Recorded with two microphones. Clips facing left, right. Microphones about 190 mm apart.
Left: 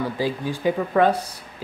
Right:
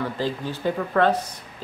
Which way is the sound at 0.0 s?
10° left (ahead or behind).